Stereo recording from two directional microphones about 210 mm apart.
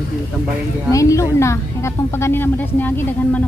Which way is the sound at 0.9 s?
15° left (ahead or behind).